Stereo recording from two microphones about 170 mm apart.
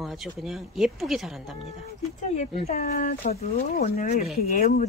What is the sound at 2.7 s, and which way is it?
Speech, 60° left (ahead or behind).